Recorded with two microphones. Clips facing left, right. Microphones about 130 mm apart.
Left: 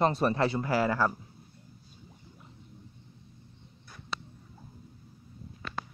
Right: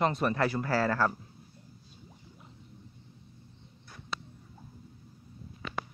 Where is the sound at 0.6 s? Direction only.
15° left (ahead or behind).